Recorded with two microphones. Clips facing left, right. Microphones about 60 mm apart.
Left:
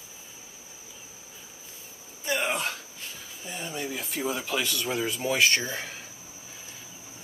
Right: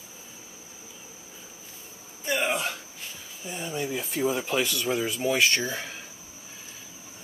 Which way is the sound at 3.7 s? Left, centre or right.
Centre.